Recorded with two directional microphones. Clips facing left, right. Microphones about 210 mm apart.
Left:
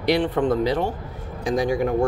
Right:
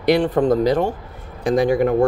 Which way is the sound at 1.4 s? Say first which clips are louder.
Right 5 dB; 60° right (ahead or behind).